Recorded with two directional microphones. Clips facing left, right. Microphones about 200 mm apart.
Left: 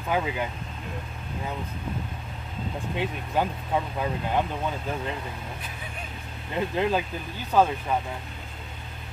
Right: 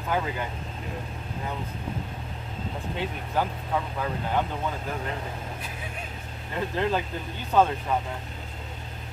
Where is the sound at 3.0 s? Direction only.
15° left (ahead or behind).